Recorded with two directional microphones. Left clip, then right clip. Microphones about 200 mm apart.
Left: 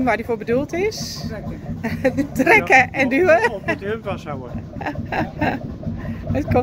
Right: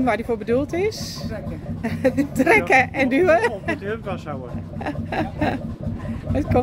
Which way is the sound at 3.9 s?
45° left (ahead or behind).